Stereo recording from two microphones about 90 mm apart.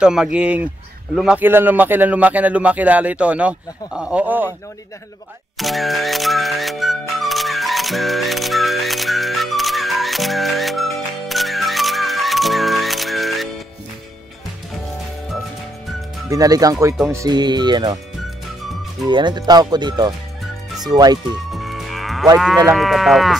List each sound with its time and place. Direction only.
0.0 s speech: 10° right (ahead or behind)
1.4 s speech: 25° right (ahead or behind)
5.6 s music: centre (ahead or behind)
16.3 s speech: 40° right (ahead or behind)
17.3 s speech: 55° right (ahead or behind)
19.0 s speech: 55° right (ahead or behind)
21.5 s music: centre (ahead or behind)
22.7 s livestock: centre (ahead or behind)